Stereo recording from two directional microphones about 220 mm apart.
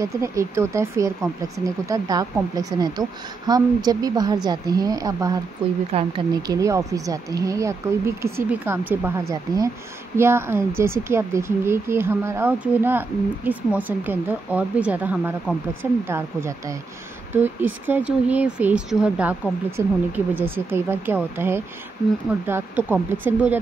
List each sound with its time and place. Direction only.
0.0 s a woman's voice: 15° right (ahead or behind)